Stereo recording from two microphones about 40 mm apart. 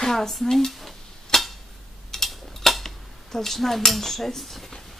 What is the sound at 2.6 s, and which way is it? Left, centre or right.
Dishes, centre.